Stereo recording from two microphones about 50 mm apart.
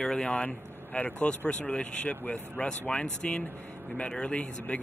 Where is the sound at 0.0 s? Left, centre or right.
Centre.